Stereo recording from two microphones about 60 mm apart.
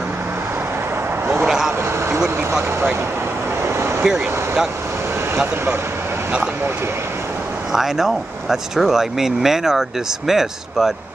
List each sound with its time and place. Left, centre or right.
1.2 s vehicle: right
2.1 s vehicle: centre
3.6 s vehicle: right
4.0 s speech: centre
7.7 s speech: centre